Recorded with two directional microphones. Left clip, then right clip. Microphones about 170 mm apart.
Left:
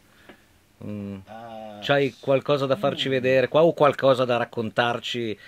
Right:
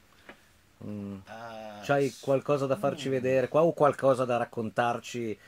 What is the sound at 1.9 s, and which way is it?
Speech, 10° left (ahead or behind).